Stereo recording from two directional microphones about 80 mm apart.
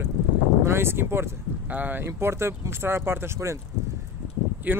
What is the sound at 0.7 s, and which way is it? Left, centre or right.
Speech, right.